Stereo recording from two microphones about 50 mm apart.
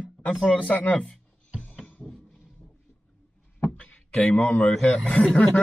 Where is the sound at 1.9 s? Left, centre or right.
Left.